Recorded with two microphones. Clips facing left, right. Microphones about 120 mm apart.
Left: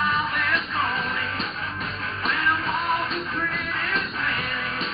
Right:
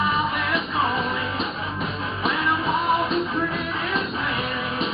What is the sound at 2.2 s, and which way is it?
Music, 20° right (ahead or behind).